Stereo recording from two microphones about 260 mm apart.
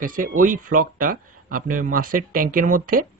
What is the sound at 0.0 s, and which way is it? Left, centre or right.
Speech, right.